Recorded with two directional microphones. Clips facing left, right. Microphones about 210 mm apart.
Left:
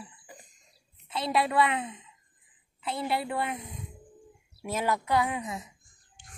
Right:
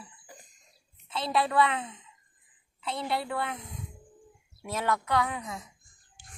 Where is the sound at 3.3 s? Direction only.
15° left (ahead or behind).